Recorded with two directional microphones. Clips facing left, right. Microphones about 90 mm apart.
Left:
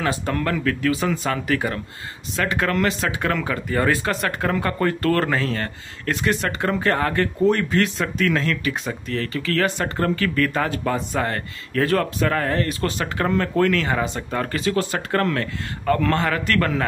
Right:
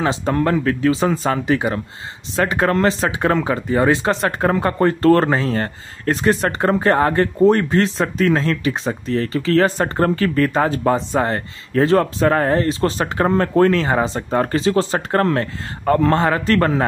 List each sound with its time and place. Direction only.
0.0 s speech: 25° right (ahead or behind)
1.5 s speech: 20° right (ahead or behind)